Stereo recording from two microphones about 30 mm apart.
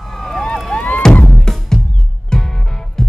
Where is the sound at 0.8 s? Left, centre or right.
Left.